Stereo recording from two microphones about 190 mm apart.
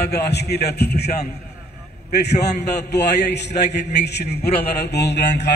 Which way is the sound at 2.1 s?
60° left (ahead or behind).